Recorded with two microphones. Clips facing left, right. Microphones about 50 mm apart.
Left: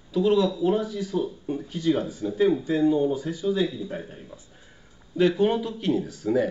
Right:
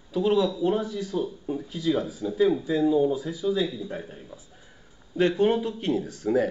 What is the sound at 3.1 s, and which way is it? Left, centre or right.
Speech, left.